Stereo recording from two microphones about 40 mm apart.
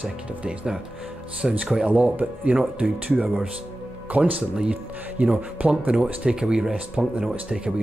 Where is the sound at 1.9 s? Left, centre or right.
Right.